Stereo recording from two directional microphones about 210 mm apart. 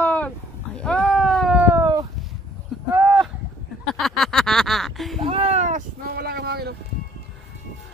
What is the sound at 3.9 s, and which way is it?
Speech, centre (ahead or behind).